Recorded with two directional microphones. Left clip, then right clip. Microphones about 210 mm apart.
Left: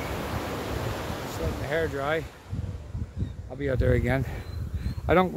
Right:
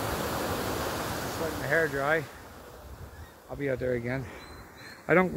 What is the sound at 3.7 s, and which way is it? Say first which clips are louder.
Speech: left 7 dB; 45° left (ahead or behind).